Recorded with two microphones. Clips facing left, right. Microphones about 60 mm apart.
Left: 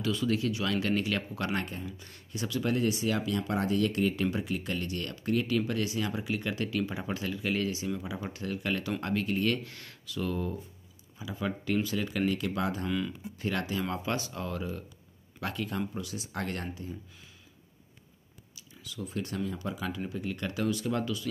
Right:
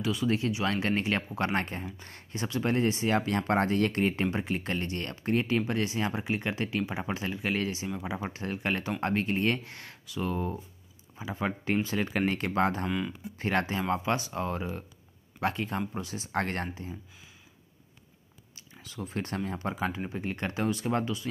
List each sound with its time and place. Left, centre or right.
0.0 s speech: centre; by 12.8 s right
12.8 s speech: right
13.4 s speech: right
18.5 s speech: right